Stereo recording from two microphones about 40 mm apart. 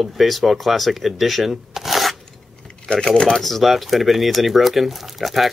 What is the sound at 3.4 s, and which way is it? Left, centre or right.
Speech, centre.